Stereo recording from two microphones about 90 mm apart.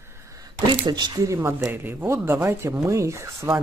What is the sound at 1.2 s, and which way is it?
Speech, 35° right (ahead or behind).